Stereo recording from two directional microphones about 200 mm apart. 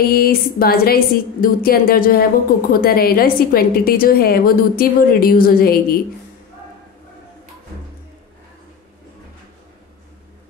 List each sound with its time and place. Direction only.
0.1 s a woman's voice: 50° left (ahead or behind)